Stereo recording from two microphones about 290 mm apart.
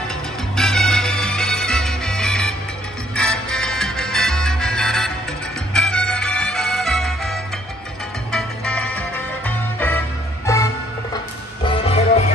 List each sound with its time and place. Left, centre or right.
0.6 s music: centre